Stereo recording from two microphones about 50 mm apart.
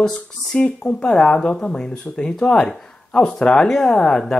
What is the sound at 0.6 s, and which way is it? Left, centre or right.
Speech, centre.